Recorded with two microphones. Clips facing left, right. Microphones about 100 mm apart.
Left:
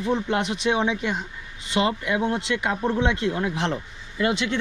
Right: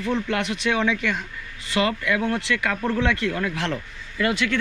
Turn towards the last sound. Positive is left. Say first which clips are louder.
# right 1 dB
turn(degrees=25)  # may be behind; listen again after turning